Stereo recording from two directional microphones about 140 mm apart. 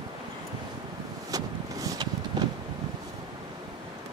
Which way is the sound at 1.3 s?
25° right (ahead or behind).